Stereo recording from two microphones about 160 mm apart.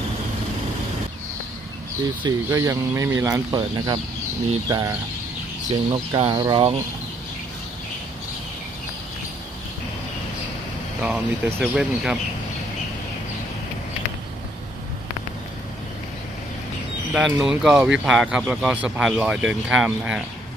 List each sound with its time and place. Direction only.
2.2 s speech: 20° right (ahead or behind)
11.0 s speech: 10° right (ahead or behind)
17.1 s speech: 5° right (ahead or behind)